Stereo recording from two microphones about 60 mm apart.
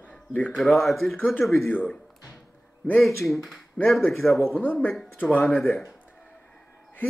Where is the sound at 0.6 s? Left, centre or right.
Centre.